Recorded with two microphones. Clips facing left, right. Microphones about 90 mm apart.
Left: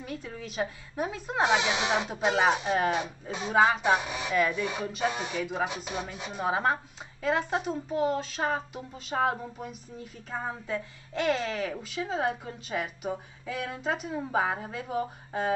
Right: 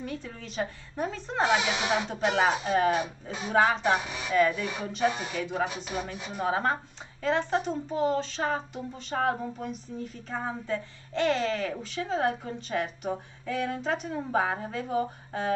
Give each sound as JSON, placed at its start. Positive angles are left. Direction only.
{"t": 0.0, "sound": "speech", "side_deg": 5}
{"t": 1.5, "sound": "speech", "side_deg": 20}
{"t": 6.4, "sound": "speech", "side_deg": 5}